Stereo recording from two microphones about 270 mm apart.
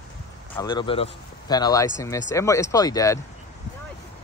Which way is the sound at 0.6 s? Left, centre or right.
Centre.